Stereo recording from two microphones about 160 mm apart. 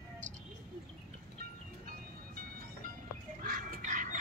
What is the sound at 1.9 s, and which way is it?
Vehicle, 60° right (ahead or behind).